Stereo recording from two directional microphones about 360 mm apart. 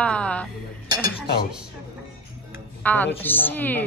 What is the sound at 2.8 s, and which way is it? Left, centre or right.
Speech, centre.